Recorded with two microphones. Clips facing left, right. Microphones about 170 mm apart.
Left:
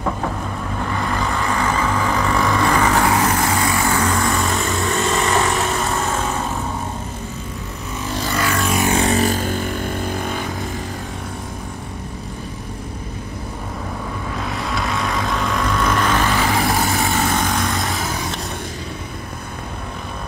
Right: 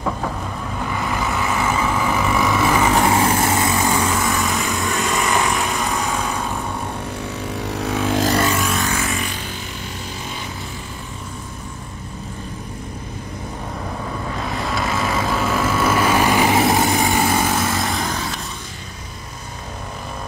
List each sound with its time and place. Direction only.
0.9 s vehicle: 5° right (ahead or behind)
7.8 s vehicle: 65° right (ahead or behind)
8.7 s vehicle: 20° left (ahead or behind)
9.0 s vehicle: 40° left (ahead or behind)
14.4 s vehicle: centre (ahead or behind)